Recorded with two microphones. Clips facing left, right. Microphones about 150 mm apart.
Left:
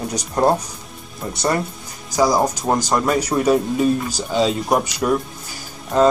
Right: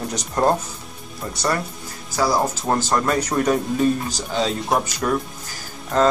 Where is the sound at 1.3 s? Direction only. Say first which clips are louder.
Left 3 dB; 25° left (ahead or behind).